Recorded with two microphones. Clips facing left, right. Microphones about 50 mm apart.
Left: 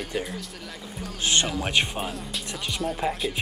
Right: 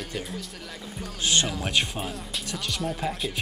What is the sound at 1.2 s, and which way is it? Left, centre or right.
Music, left.